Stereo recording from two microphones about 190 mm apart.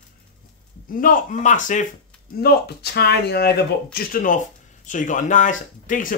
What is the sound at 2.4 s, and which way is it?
Speech, 60° left (ahead or behind).